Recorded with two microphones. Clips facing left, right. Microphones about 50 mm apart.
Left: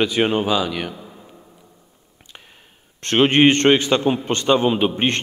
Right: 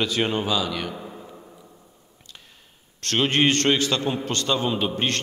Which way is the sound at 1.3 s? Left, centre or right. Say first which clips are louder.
Right 2 dB; centre.